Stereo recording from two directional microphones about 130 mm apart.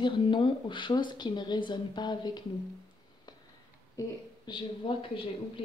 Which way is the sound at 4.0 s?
25° left (ahead or behind).